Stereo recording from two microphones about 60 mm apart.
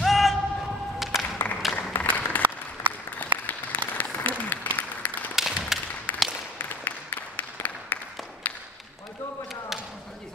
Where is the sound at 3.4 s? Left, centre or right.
Left.